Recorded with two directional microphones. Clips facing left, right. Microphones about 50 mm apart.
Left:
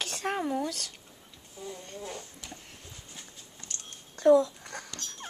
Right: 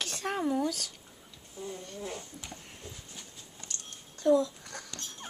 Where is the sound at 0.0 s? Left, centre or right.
Centre.